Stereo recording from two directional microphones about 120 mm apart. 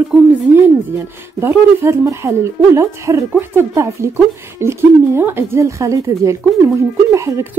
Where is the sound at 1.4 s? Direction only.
25° right (ahead or behind).